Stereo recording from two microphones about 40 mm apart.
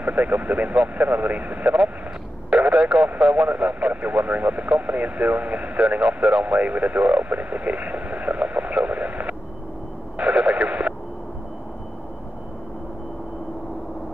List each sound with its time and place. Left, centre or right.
0.0 s speech: right
2.5 s radio: right